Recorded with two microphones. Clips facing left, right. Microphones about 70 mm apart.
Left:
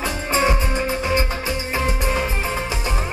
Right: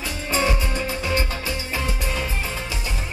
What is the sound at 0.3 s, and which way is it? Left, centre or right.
Music, left.